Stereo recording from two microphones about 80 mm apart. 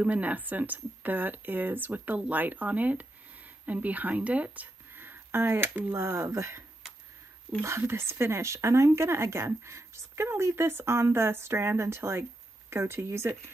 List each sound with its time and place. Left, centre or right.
0.0 s speech: centre; by 6.6 s right
7.6 s speech: right